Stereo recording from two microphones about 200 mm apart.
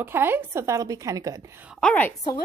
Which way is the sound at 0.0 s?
10° right (ahead or behind).